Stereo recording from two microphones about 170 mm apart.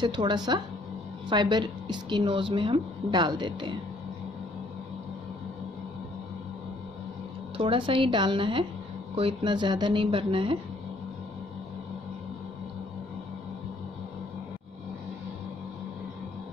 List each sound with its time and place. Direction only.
0.0 s a woman's voice: 25° right (ahead or behind)
7.5 s a woman's voice: 30° right (ahead or behind)